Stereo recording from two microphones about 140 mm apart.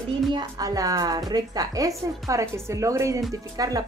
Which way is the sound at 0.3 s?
30° right (ahead or behind).